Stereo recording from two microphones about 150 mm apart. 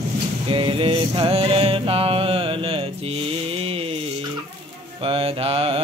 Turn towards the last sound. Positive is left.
turn(degrees=-40)  # may be behind; listen again after turning